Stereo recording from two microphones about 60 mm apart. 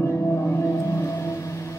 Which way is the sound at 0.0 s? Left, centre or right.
Left.